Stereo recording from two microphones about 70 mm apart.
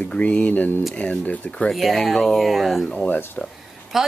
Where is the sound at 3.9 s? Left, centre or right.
Centre.